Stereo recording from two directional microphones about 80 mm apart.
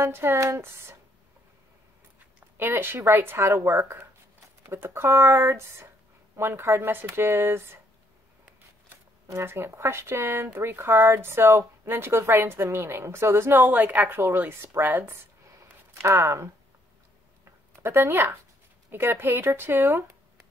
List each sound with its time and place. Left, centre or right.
0.0 s speech: right
2.5 s speech: right
9.4 s a woman's voice: right
15.9 s speech: right
17.5 s a sound: right
18.9 s a woman's voice: right